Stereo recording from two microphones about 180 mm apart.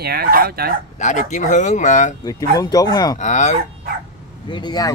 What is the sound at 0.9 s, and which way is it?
Speech, 40° left (ahead or behind).